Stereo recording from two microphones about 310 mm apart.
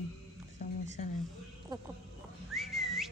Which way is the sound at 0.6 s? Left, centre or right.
Left.